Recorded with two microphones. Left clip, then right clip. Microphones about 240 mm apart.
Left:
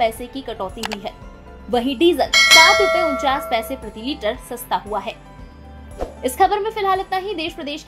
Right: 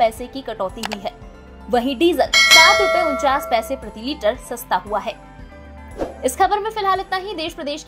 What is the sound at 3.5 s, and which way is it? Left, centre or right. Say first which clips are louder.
A woman's voice: right 2 dB; right.